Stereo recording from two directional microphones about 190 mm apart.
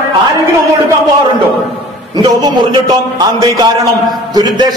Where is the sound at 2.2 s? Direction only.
20° right (ahead or behind).